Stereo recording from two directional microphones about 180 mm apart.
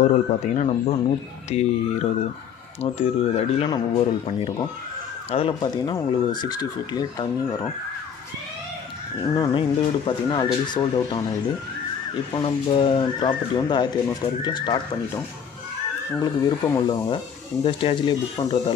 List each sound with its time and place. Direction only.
0.0 s speech: 40° left (ahead or behind)
3.6 s speech: 20° left (ahead or behind)
5.3 s speech: 30° left (ahead or behind)
9.4 s speech: 25° left (ahead or behind)
12.4 s speech: 30° left (ahead or behind)